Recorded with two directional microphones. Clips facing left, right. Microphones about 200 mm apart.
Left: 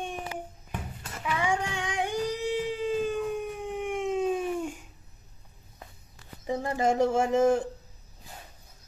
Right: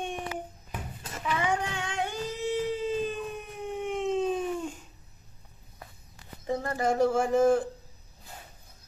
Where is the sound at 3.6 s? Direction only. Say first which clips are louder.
Right 5 dB; 15° left (ahead or behind).